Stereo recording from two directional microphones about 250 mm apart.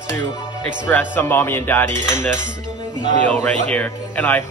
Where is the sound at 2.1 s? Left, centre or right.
Right.